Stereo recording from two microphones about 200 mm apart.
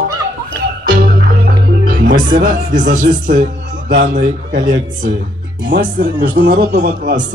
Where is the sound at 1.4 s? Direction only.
50° right (ahead or behind).